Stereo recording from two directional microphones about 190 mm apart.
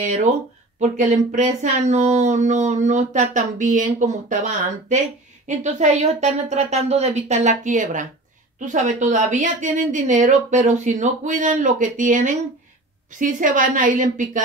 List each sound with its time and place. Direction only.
0.0 s a woman's voice: 40° right (ahead or behind)